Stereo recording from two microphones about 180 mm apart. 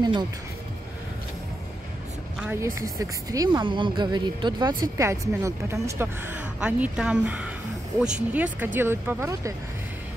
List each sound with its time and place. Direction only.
2.4 s speech: 15° right (ahead or behind)